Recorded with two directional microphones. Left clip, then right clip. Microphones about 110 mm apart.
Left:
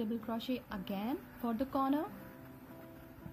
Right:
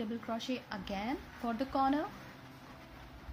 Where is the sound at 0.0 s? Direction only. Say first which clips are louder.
Right 1 dB; 25° left (ahead or behind).